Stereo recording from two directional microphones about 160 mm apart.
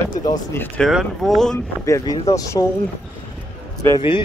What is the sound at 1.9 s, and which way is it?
Speech, 20° left (ahead or behind).